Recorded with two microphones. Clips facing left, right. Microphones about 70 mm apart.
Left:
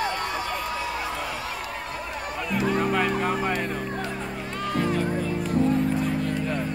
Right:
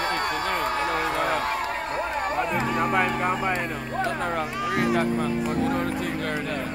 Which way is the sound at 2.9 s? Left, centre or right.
Centre.